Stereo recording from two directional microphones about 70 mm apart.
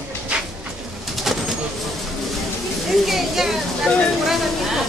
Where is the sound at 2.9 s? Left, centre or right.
Centre.